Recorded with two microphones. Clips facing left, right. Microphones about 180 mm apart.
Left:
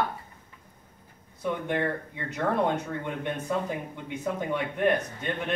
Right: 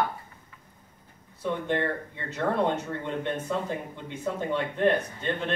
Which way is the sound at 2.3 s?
15° left (ahead or behind).